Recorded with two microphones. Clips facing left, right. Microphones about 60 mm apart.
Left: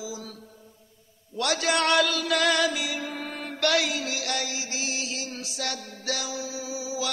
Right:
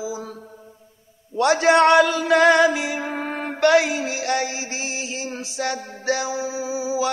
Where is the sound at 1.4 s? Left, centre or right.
Right.